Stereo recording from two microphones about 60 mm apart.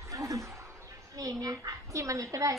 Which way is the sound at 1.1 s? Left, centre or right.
Right.